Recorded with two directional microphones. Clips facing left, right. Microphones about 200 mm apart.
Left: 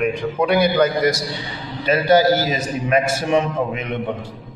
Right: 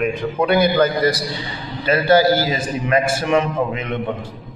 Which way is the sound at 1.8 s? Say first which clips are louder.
Even; 20° left (ahead or behind).